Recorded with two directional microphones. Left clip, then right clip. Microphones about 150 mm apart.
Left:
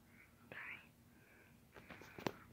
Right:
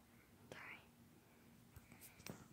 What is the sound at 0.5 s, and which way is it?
Whispering, 10° right (ahead or behind).